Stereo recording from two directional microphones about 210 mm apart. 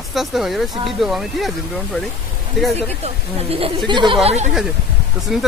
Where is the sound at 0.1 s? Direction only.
Centre (ahead or behind).